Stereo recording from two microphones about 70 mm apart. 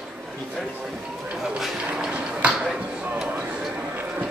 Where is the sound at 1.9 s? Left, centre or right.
Centre.